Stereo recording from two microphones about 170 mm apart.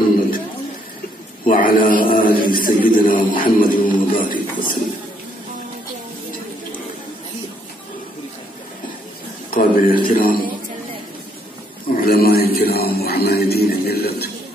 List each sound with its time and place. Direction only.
1.4 s a man's voice: 55° left (ahead or behind)
9.5 s a sound: 55° left (ahead or behind)
10.0 s a man's voice: 55° left (ahead or behind)
11.9 s a man's voice: 60° left (ahead or behind)